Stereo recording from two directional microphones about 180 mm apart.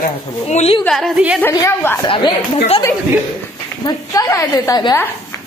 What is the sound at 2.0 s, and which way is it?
Speech, 30° left (ahead or behind).